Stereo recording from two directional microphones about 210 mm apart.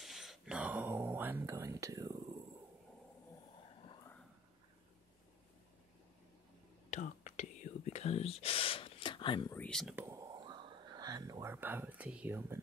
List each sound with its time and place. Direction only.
0.0 s a sound: centre (ahead or behind); by 2.1 s 15° right (ahead or behind)
6.9 s whispering: 35° left (ahead or behind); by 9.6 s 20° left (ahead or behind)
9.6 s speech: centre (ahead or behind)
9.9 s whispering: 15° right (ahead or behind)